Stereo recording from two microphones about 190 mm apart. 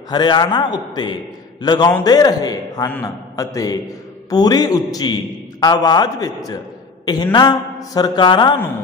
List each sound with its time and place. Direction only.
0.1 s a man's voice: 25° left (ahead or behind)